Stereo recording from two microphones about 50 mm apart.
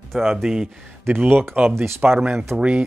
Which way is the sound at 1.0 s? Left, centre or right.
Right.